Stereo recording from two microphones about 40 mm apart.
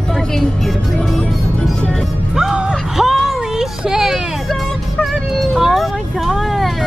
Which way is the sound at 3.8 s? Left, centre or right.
Centre.